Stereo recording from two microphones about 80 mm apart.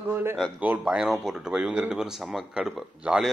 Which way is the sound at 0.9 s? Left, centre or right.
Centre.